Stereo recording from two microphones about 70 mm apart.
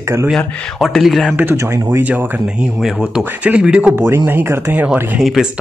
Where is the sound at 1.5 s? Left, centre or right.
Right.